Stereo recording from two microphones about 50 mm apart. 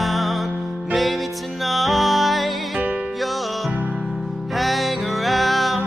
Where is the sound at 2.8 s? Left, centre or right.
Right.